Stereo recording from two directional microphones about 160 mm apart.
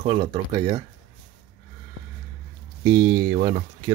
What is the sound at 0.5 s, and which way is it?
Speech, 25° right (ahead or behind).